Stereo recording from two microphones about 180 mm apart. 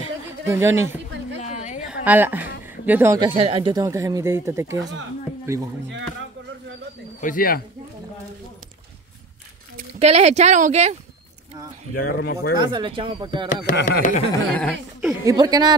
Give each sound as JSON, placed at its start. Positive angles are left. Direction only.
{"t": 0.5, "sound": "speech", "side_deg": -15}
{"t": 1.4, "sound": "a sound", "side_deg": 40}
{"t": 2.0, "sound": "speech", "side_deg": -10}
{"t": 3.2, "sound": "speech", "side_deg": -30}
{"t": 3.8, "sound": "speech", "side_deg": -15}
{"t": 7.2, "sound": "speech", "side_deg": 50}
{"t": 9.8, "sound": "speech", "side_deg": -35}
{"t": 11.9, "sound": "speech", "side_deg": 60}
{"t": 12.5, "sound": "speech", "side_deg": -25}
{"t": 13.7, "sound": "speech", "side_deg": 55}
{"t": 14.5, "sound": "speech", "side_deg": 10}
{"t": 15.2, "sound": "speech", "side_deg": -20}